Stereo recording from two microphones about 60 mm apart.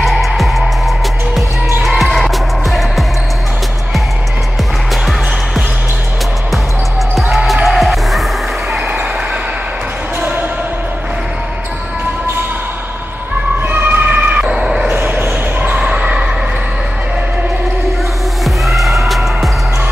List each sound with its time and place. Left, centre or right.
0.0 s music: centre
7.3 s music: centre
13.6 s emergency vehicle: right
14.4 s a sound: centre
14.9 s basketball bounce: right
15.8 s a sound: centre
18.4 s music: centre